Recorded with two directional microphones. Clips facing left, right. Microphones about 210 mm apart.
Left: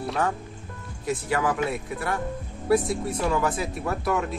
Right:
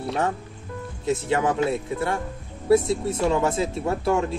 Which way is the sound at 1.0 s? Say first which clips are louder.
Right 3 dB; 25° right (ahead or behind).